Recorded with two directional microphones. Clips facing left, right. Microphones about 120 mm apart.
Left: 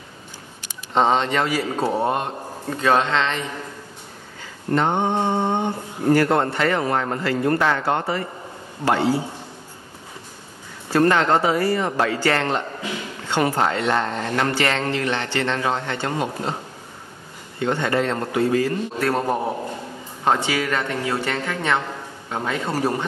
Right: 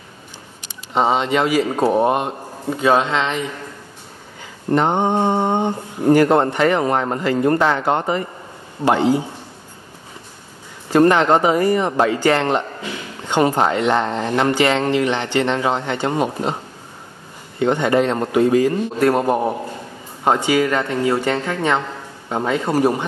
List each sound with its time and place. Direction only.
0.9 s a man's voice: 10° right (ahead or behind)
4.6 s a man's voice: 20° right (ahead or behind)
10.9 s speech: 20° right (ahead or behind)
17.6 s a man's voice: 20° right (ahead or behind)